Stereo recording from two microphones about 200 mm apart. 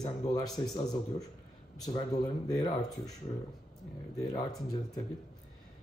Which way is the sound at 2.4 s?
20° left (ahead or behind).